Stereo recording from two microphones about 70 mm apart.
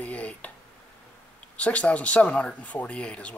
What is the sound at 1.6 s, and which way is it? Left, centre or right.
Speech, centre.